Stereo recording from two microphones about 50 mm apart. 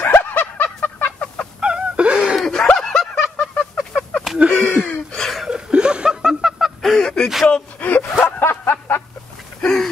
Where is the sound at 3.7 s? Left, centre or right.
Centre.